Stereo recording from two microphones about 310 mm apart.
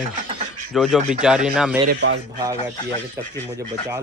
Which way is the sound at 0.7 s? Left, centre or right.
Centre.